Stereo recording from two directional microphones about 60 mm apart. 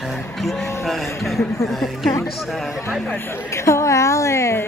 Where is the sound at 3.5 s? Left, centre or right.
Left.